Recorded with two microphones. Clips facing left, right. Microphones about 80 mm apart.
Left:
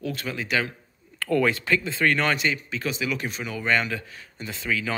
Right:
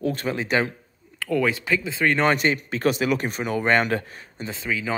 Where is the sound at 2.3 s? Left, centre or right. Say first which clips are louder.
Right 4 dB; right.